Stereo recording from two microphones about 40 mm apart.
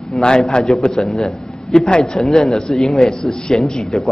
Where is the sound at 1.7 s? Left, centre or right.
Centre.